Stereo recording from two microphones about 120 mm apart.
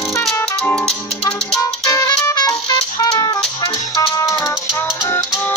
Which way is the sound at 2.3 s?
35° left (ahead or behind).